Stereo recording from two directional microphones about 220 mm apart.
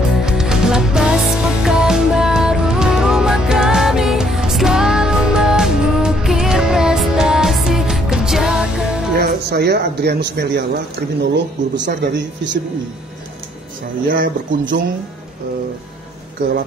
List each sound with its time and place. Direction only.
0.1 s music: 5° right (ahead or behind)
9.1 s speech: 45° right (ahead or behind)
14.0 s speech: 40° right (ahead or behind)